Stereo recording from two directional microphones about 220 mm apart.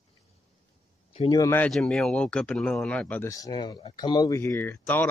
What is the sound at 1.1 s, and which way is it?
Speech, 20° left (ahead or behind).